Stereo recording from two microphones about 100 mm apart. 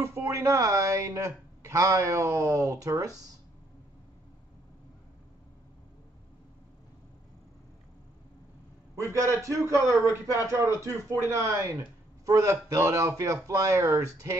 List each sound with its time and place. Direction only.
0.0 s speech: 30° right (ahead or behind)
8.9 s speech: 30° right (ahead or behind)